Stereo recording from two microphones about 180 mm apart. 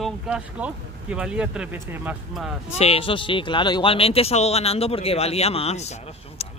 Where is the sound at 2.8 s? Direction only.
30° left (ahead or behind).